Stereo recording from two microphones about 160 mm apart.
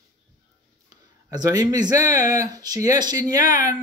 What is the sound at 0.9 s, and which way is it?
Speech, 25° right (ahead or behind).